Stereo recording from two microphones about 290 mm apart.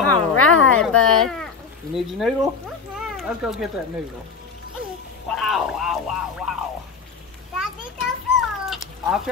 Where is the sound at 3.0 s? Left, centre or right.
Centre.